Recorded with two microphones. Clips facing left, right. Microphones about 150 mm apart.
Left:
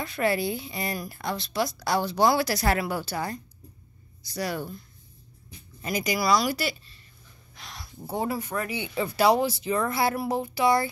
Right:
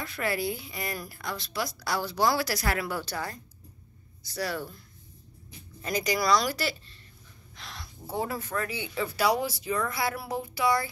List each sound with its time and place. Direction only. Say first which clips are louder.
0.0 s speech: left 4 dB; 25° left (ahead or behind)
2.9 s speech: left 3 dB; 15° left (ahead or behind)
5.8 s speech: left 1 dB; 10° left (ahead or behind)
7.5 s a sound: even; 5° left (ahead or behind)
8.1 s speech: left 3 dB; 15° left (ahead or behind)